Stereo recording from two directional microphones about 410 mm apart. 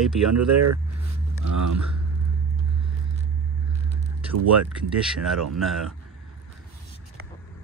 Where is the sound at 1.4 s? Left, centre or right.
Right.